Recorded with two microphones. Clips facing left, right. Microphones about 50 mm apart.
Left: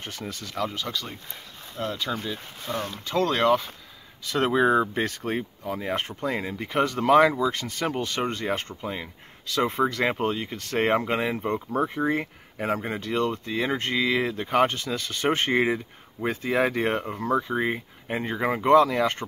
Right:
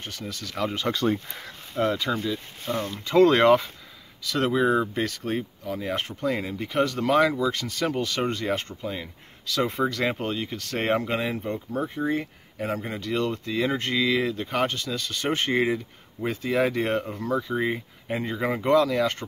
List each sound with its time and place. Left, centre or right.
0.0 s speech: left
0.6 s speech: centre
1.8 s speech: right
3.1 s speech: centre
4.3 s speech: left
7.3 s speech: centre
7.9 s speech: centre
8.8 s speech: left
9.6 s speech: centre
11.8 s speech: left
12.5 s speech: left
13.3 s speech: centre
17.2 s speech: left